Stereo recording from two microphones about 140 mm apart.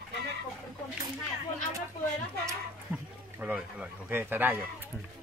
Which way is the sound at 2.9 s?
15° right (ahead or behind).